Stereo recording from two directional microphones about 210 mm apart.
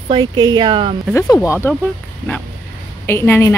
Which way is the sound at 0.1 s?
20° right (ahead or behind).